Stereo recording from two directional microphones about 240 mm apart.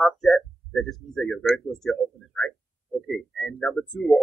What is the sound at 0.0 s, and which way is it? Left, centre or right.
Speech, centre.